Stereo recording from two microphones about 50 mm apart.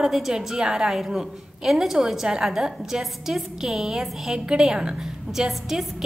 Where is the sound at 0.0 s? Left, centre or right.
Centre.